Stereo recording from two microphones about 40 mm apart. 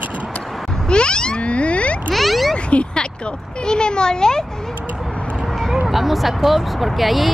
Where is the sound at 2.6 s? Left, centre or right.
Left.